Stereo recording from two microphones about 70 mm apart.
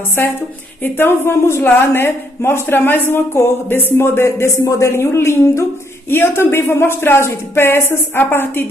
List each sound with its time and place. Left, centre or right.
0.9 s speech: left